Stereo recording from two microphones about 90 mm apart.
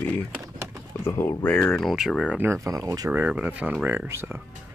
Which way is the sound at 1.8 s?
Centre (ahead or behind).